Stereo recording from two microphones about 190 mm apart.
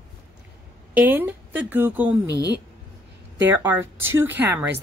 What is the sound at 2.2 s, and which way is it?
Speech, 65° right (ahead or behind).